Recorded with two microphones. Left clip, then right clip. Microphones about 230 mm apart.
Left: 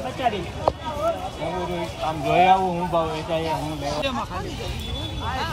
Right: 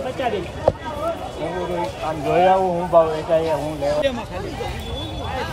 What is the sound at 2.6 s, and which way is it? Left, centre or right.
Speech, left.